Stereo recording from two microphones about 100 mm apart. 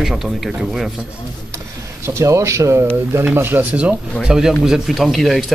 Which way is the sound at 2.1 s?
30° right (ahead or behind).